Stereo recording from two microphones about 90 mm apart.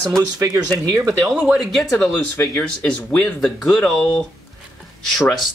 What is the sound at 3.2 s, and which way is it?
Speech, 5° left (ahead or behind).